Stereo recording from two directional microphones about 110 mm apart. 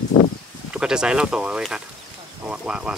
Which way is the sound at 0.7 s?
5° right (ahead or behind).